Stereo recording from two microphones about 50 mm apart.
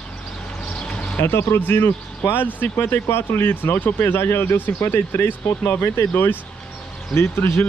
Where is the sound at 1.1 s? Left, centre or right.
Left.